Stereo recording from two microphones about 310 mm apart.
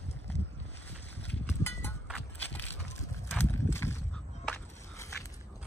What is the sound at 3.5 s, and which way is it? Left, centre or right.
Horse, centre.